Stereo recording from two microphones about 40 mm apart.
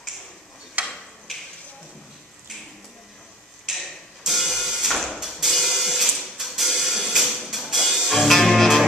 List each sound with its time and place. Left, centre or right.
0.8 s tick-tock: right
3.7 s tick-tock: centre
4.3 s music: centre